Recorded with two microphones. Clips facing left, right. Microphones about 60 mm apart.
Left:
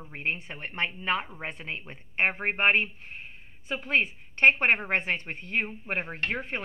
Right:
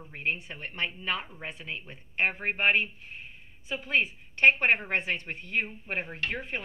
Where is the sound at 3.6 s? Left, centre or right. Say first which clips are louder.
Left 1 dB; left.